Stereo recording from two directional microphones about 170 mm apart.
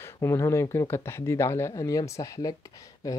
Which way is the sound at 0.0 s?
15° left (ahead or behind).